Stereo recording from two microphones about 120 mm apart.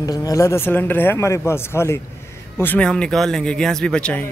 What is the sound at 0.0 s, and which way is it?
Speech, 30° left (ahead or behind).